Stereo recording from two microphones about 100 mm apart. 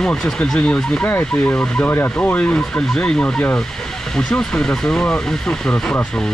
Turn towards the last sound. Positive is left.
turn(degrees=10)  # may be behind; listen again after turning